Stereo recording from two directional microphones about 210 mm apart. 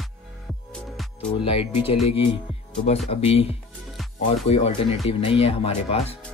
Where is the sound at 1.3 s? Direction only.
25° left (ahead or behind).